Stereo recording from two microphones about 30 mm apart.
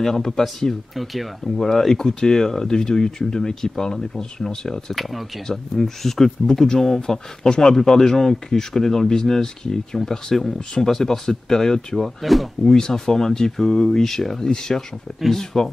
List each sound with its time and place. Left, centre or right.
0.0 s speech: centre
0.9 s speech: centre
1.6 s speech: centre
12.2 s speech: centre
12.7 s speech: left